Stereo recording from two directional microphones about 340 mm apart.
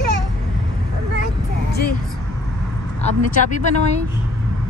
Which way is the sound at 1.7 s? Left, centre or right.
Left.